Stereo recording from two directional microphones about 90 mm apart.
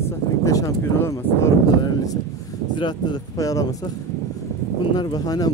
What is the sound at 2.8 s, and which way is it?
Speech, 55° left (ahead or behind).